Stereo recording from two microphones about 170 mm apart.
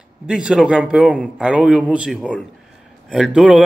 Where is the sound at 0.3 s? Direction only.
5° right (ahead or behind).